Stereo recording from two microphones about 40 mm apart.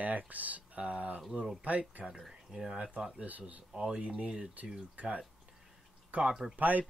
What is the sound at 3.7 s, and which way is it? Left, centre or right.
Speech, centre.